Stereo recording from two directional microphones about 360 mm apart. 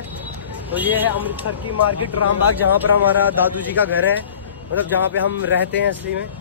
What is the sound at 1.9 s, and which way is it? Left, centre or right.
Speech, left.